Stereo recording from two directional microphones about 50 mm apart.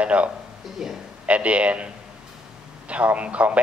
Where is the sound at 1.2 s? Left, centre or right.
Right.